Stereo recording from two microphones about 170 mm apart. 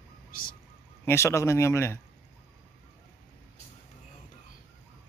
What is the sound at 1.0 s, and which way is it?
Speech, 15° left (ahead or behind).